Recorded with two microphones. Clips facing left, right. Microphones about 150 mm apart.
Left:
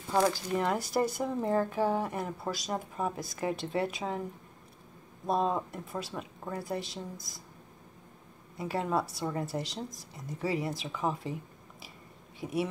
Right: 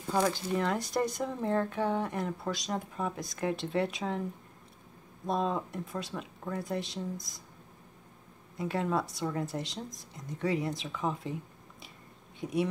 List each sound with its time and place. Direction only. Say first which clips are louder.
0.1 s speech: left 1 dB; 5° left (ahead or behind)
5.2 s speech: left 2 dB; 5° left (ahead or behind)
8.5 s speech: even; centre (ahead or behind)